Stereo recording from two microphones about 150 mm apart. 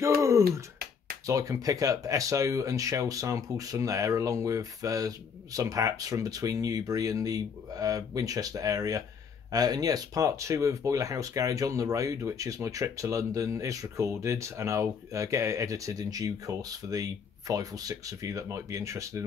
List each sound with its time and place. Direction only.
0.4 s finger snapping: 90° right
1.2 s speech: 20° right (ahead or behind)